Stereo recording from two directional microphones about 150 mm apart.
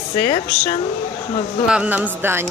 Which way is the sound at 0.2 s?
40° left (ahead or behind).